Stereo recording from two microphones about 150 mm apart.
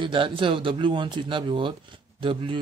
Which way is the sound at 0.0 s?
35° right (ahead or behind).